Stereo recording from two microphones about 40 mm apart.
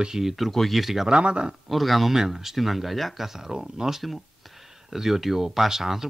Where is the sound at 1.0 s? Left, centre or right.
Right.